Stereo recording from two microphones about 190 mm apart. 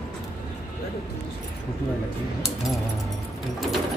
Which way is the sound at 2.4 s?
Centre (ahead or behind).